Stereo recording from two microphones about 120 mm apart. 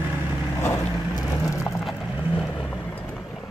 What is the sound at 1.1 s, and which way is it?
Vehicle, 30° left (ahead or behind).